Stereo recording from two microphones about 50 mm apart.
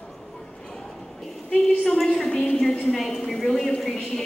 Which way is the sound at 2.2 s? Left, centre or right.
Left.